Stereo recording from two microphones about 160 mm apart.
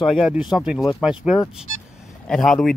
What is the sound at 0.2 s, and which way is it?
Speech, 5° right (ahead or behind).